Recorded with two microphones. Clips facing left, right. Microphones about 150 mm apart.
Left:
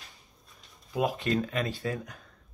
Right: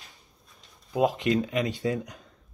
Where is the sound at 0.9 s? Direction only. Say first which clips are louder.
Right 4 dB; 20° right (ahead or behind).